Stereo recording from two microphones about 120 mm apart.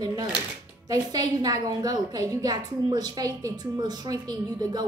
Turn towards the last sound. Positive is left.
turn(degrees=-35)  # may be behind; listen again after turning